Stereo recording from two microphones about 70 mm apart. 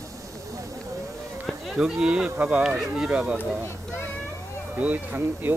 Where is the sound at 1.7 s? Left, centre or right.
Centre.